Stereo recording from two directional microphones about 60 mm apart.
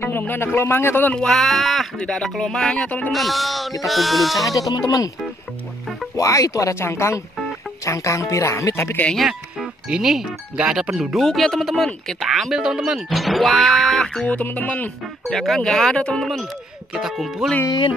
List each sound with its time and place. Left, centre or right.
0.4 s a man's voice: left
1.1 s speech: centre
2.0 s speech: centre
4.6 s speech: left
6.1 s speech: left
6.8 s speech: left
9.1 s speech: centre
11.1 s speech: centre
13.1 s speech: centre
14.2 s speech: left
15.2 s speech: centre
16.9 s speech: centre